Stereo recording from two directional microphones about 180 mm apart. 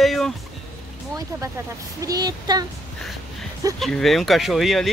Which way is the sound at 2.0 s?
20° right (ahead or behind).